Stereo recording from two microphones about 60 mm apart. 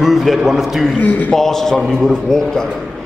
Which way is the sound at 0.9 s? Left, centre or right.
Left.